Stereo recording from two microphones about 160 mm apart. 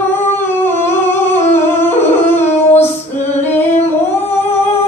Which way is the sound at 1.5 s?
15° left (ahead or behind).